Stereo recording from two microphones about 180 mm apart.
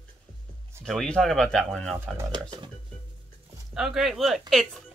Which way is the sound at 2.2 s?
25° right (ahead or behind).